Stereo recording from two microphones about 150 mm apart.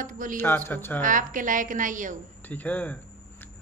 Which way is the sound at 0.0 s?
65° right (ahead or behind).